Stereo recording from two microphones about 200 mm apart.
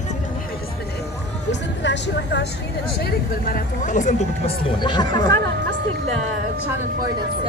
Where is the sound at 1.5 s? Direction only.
60° left (ahead or behind).